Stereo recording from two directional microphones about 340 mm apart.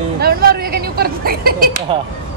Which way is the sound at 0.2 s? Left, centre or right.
Right.